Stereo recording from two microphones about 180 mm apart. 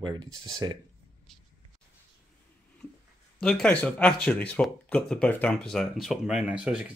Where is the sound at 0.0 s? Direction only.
25° right (ahead or behind).